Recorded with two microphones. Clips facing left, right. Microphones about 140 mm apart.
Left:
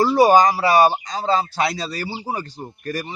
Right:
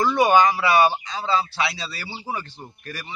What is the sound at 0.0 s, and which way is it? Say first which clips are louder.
A man's voice: left 4 dB; 35° left (ahead or behind).